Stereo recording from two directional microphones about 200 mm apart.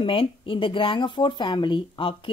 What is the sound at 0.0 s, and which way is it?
Speech, 25° left (ahead or behind).